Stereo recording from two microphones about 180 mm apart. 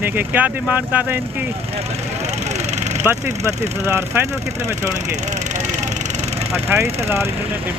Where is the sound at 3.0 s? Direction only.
15° right (ahead or behind).